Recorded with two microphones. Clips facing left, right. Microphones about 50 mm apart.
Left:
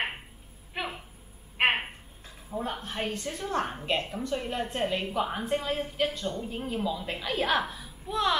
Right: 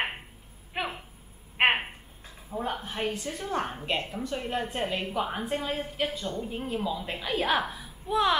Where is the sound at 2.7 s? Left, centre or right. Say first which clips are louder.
Right 1 dB; centre.